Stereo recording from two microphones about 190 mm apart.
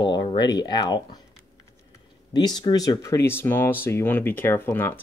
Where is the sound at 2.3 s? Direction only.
20° left (ahead or behind).